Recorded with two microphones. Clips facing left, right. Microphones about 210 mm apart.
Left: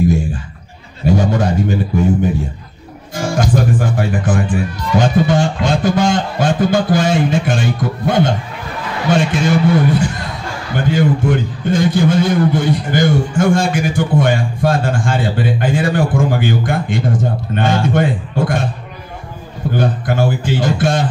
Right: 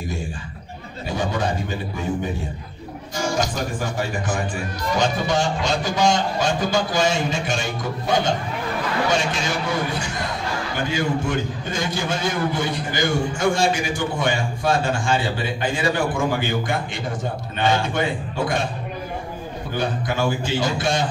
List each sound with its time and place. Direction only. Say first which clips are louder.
1.0 s a sound: left 9 dB; 50° left (ahead or behind)
3.2 s a man's voice: left 7 dB; 55° left (ahead or behind)
19.8 s a man's voice: left 5 dB; 55° left (ahead or behind)